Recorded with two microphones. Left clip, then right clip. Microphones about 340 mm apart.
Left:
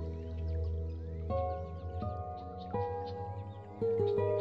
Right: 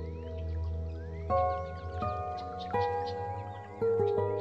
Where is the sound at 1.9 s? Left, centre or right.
Right.